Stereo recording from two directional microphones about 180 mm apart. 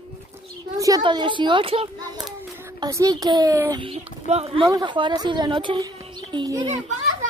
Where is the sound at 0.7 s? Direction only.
20° right (ahead or behind).